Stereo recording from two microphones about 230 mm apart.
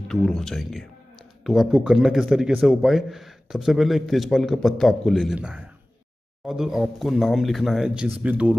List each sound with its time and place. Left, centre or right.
0.1 s a man's voice: centre